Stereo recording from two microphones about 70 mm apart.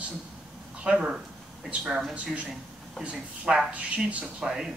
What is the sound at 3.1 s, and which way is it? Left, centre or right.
Speech, centre.